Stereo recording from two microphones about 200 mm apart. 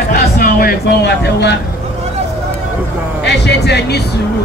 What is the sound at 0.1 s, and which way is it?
Speech, 45° left (ahead or behind).